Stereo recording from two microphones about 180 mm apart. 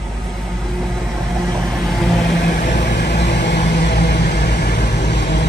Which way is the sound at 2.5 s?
65° left (ahead or behind).